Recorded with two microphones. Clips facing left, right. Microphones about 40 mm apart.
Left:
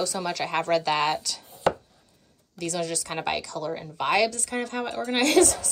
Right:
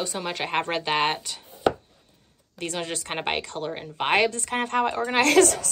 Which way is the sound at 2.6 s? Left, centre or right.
Right.